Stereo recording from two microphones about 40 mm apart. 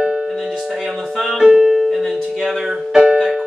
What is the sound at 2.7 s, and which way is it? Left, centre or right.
Music, centre.